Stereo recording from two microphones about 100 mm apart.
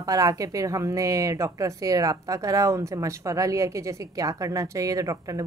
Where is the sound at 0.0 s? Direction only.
35° right (ahead or behind).